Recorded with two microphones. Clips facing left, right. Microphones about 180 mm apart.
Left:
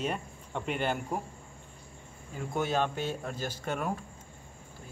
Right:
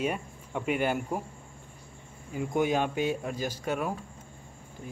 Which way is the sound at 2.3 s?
15° right (ahead or behind).